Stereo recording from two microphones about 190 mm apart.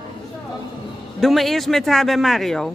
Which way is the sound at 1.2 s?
Centre (ahead or behind).